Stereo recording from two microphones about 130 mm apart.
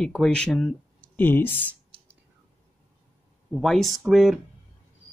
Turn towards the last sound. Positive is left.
turn(degrees=0)  # may be behind; listen again after turning